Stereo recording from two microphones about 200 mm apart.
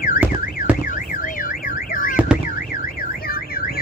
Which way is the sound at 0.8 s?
45° left (ahead or behind).